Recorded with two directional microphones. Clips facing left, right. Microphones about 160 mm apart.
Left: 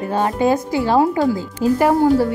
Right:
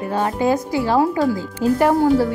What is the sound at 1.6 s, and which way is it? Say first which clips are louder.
Speech: left 1 dB; 10° left (ahead or behind).